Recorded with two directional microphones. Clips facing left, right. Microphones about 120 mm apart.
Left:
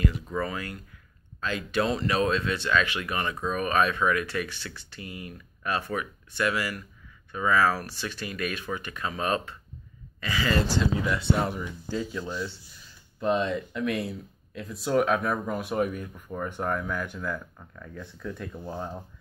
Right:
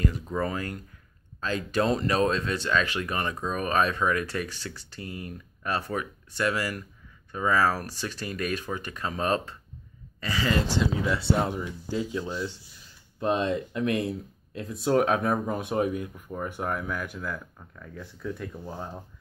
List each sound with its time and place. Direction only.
0.4 s speech: 40° right (ahead or behind)
10.5 s speech: 20° right (ahead or behind)
11.4 s speech: 20° right (ahead or behind)
16.3 s speech: 10° right (ahead or behind)